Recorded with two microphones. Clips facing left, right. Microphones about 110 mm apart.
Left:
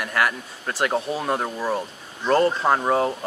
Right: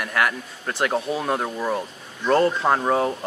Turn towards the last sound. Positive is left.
turn(degrees=0)  # may be behind; listen again after turning